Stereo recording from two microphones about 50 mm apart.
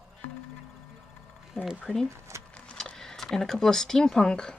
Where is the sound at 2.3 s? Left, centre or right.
Right.